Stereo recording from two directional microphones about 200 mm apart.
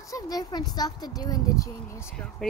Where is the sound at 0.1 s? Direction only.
20° left (ahead or behind).